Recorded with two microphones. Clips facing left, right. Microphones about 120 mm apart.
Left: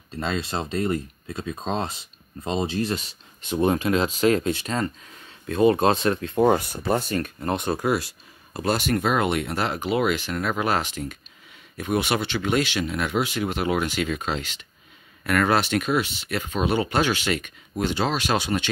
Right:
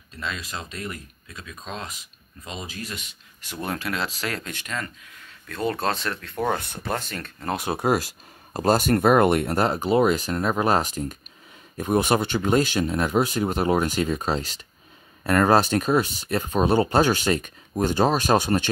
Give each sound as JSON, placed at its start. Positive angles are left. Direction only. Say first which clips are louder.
{"t": 0.2, "sound": "speech", "louder": "left 6 dB", "side_deg": 30}
{"t": 3.4, "sound": "speech", "louder": "left 8 dB", "side_deg": 20}
{"t": 4.6, "sound": "speech", "louder": "left 6 dB", "side_deg": 35}
{"t": 5.5, "sound": "speech", "louder": "left 7 dB", "side_deg": 20}
{"t": 6.6, "sound": "speech", "louder": "left 5 dB", "side_deg": 5}
{"t": 7.4, "sound": "speech", "louder": "right 1 dB", "side_deg": -5}
{"t": 7.8, "sound": "speech", "louder": "right 1 dB", "side_deg": -45}